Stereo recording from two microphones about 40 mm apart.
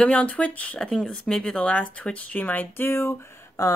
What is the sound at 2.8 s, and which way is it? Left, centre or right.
Speech, left.